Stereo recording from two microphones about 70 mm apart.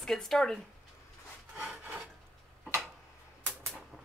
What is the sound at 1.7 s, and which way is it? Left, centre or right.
Rub, right.